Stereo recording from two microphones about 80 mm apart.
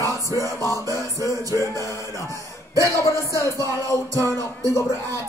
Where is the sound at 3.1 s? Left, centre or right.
Left.